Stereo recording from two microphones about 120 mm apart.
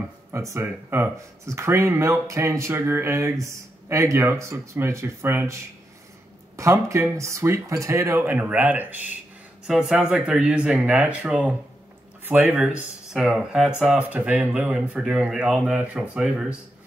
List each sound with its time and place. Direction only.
0.3 s speech: 25° right (ahead or behind)
12.6 s speech: 5° right (ahead or behind)